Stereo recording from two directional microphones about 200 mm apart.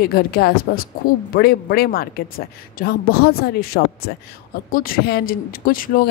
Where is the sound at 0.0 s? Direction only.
50° left (ahead or behind).